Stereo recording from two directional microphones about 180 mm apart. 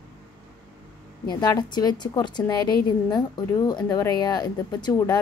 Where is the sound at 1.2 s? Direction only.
25° left (ahead or behind).